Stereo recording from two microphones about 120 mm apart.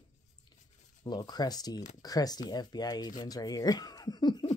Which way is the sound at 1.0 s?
35° left (ahead or behind).